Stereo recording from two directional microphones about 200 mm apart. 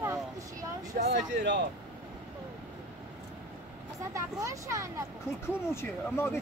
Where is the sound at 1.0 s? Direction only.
60° right (ahead or behind).